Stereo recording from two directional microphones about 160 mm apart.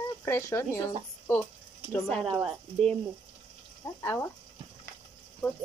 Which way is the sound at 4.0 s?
15° left (ahead or behind).